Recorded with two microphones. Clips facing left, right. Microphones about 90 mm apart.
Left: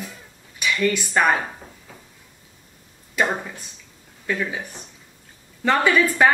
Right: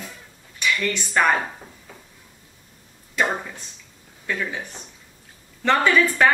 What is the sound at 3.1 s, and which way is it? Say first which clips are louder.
A man's voice: left 1 dB; 5° left (ahead or behind).